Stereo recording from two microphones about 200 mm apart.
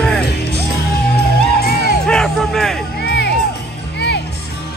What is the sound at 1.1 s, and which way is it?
Music, 50° left (ahead or behind).